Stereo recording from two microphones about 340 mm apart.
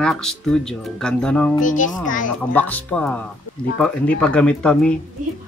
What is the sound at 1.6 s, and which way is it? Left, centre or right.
Speech, left.